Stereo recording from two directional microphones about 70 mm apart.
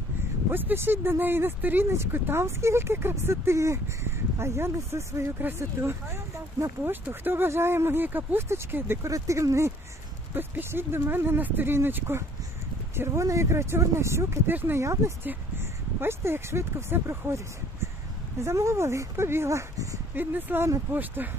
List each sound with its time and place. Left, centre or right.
0.5 s speech: right
6.8 s speech: right
9.1 s speech: right
10.3 s speech: right
14.5 s speech: right
14.8 s speech: right
15.2 s speech: right
18.4 s speech: right
20.2 s speech: right